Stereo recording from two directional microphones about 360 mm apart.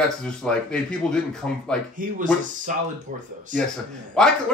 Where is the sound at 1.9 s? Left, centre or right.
Right.